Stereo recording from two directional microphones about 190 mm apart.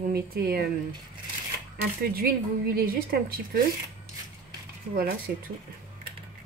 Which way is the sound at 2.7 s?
55° right (ahead or behind).